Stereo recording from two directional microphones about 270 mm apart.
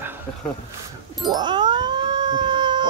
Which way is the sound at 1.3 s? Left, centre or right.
Centre.